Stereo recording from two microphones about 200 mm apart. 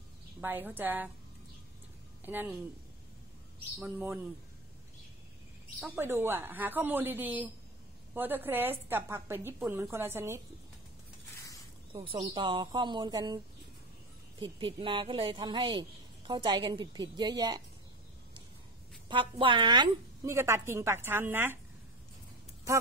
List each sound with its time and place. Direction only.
0.4 s a woman's voice: 10° right (ahead or behind)
2.2 s a woman's voice: 10° right (ahead or behind)
3.7 s a woman's voice: 10° right (ahead or behind)
5.8 s a woman's voice: 10° right (ahead or behind)
11.9 s a woman's voice: 30° right (ahead or behind)
14.4 s a woman's voice: 25° right (ahead or behind)
19.0 s a woman's voice: 25° right (ahead or behind)